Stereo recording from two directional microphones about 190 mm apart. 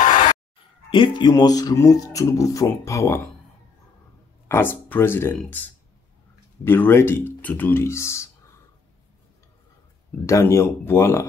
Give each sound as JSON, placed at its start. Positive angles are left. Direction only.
{"t": 0.0, "sound": "a sound", "side_deg": 40}
{"t": 0.8, "sound": "speech", "side_deg": 25}
{"t": 4.5, "sound": "speech", "side_deg": 10}
{"t": 10.2, "sound": "speech", "side_deg": 15}